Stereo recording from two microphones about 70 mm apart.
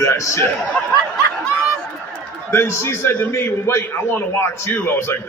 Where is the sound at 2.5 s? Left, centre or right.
Left.